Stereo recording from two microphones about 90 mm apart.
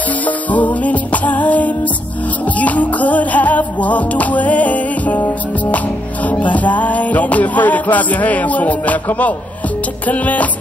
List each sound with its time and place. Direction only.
0.5 s music: 15° left (ahead or behind)